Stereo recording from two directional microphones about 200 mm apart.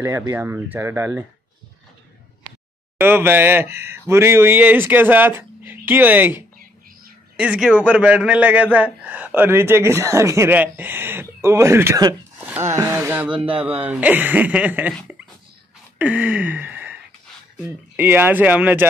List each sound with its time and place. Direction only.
0.0 s a man's voice: 10° right (ahead or behind)
3.0 s a man's voice: 10° right (ahead or behind)
13.3 s speech: 25° right (ahead or behind)
13.6 s a man's voice: 10° right (ahead or behind)
16.0 s a sound: 5° right (ahead or behind)
17.6 s a man's voice: 10° right (ahead or behind)